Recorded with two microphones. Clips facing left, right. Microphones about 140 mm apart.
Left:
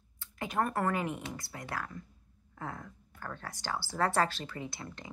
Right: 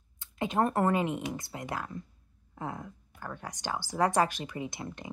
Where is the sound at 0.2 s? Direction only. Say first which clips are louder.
Right 4 dB; 20° right (ahead or behind).